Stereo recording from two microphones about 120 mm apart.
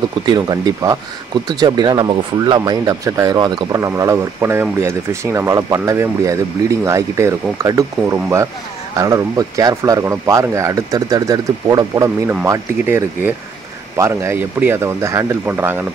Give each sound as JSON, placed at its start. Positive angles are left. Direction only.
{"t": 0.2, "sound": "speech", "side_deg": -35}